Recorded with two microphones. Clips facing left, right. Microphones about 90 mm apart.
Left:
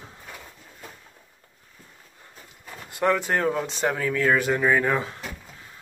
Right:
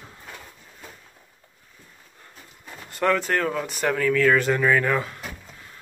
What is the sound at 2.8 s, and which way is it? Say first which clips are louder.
Speech: right 1 dB; 15° left (ahead or behind).